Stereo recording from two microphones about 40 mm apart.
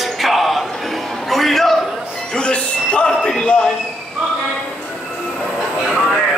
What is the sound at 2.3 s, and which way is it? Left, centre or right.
Music, left.